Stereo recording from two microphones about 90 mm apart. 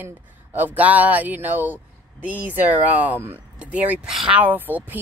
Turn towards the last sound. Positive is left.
turn(degrees=-20)  # may be behind; listen again after turning